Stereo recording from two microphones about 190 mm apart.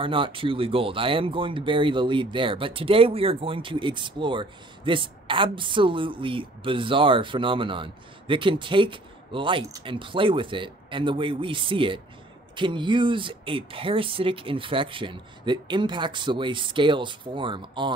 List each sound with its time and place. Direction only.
0.0 s speech: 25° right (ahead or behind)